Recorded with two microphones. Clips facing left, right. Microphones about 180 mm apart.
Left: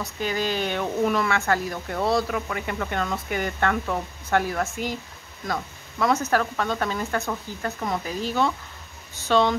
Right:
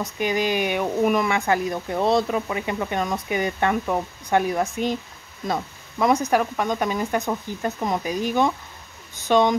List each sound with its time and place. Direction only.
0.0 s speech: 15° right (ahead or behind)